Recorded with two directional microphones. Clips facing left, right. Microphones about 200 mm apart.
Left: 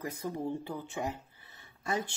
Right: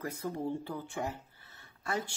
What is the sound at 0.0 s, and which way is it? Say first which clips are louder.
A man's voice: even; 15° left (ahead or behind).